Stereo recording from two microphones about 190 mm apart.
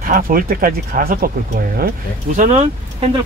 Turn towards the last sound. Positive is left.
turn(degrees=-35)  # may be behind; listen again after turning